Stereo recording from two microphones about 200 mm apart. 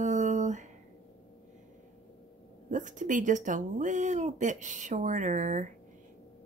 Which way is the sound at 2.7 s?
40° right (ahead or behind).